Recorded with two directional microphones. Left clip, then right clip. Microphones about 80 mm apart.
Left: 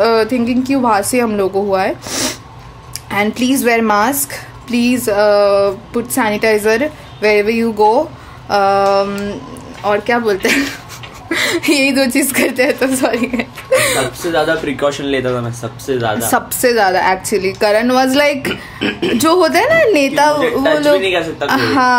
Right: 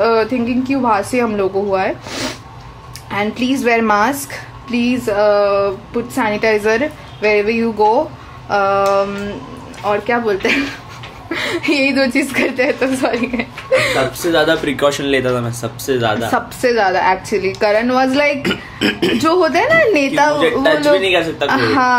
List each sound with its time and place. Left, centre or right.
0.0 s a woman's voice: left
14.3 s speech: right
16.3 s a woman's voice: left
18.5 s speech: right
19.1 s a woman's voice: left
21.0 s a woman's voice: centre
21.5 s a woman's voice: left